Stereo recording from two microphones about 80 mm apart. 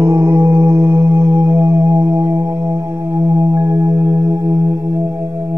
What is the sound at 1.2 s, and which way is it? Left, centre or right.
Music, right.